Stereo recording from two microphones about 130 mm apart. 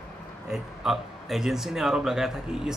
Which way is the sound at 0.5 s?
5° right (ahead or behind).